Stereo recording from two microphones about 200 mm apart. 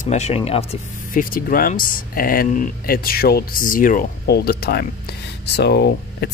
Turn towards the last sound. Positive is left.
turn(degrees=55)  # may be behind; listen again after turning